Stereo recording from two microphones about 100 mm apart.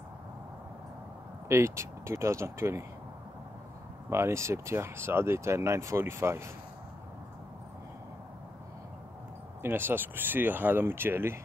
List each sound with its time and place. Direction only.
1.5 s speech: 30° right (ahead or behind)
4.1 s speech: 25° right (ahead or behind)
9.6 s speech: 20° right (ahead or behind)